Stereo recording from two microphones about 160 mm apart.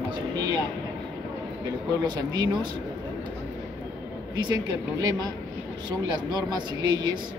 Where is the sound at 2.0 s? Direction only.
25° right (ahead or behind).